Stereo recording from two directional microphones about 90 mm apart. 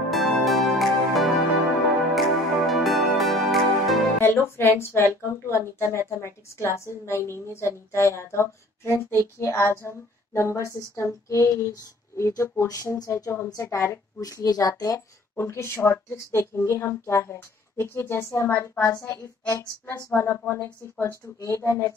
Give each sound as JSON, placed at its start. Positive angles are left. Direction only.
{"t": 0.1, "sound": "music", "side_deg": 0}
{"t": 4.2, "sound": "speech", "side_deg": 25}